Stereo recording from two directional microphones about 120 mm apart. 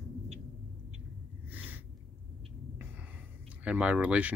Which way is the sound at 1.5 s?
15° right (ahead or behind).